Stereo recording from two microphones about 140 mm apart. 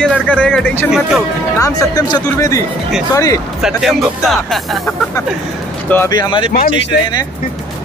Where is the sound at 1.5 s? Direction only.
25° left (ahead or behind).